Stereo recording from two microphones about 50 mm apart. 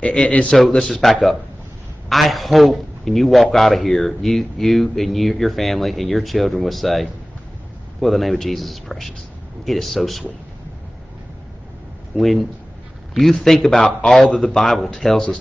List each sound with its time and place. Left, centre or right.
0.0 s a man's voice: left
0.5 s a man's voice: centre
12.2 s a man's voice: centre